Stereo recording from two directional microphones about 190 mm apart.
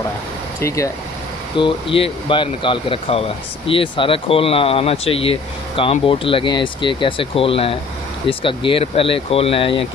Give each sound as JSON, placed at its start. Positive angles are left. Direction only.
{"t": 0.6, "sound": "speech", "side_deg": 15}
{"t": 1.6, "sound": "speech", "side_deg": 30}